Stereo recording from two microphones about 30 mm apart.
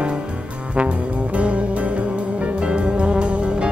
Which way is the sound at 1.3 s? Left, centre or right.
Right.